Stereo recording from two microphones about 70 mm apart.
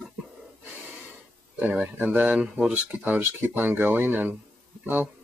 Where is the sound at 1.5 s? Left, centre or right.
Right.